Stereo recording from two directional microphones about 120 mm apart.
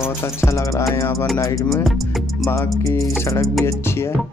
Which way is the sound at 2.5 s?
30° left (ahead or behind).